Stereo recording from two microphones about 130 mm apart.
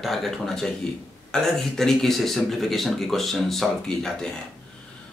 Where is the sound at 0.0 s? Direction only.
Centre (ahead or behind).